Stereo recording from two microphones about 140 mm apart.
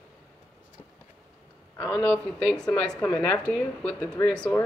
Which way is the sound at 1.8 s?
30° left (ahead or behind).